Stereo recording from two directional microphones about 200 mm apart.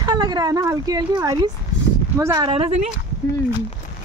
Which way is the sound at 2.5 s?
30° right (ahead or behind).